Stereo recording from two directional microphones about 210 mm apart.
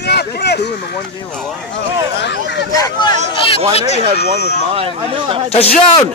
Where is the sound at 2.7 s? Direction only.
15° left (ahead or behind).